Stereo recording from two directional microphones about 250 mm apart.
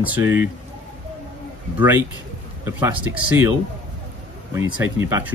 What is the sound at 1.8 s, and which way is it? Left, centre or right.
Speech, centre.